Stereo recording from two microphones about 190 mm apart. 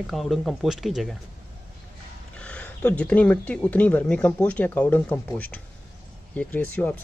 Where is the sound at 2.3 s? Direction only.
5° left (ahead or behind).